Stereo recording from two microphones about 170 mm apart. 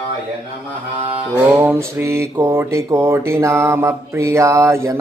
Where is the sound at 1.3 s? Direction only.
15° right (ahead or behind).